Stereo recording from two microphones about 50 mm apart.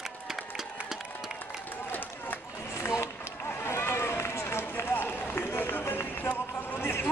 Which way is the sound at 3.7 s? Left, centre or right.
Left.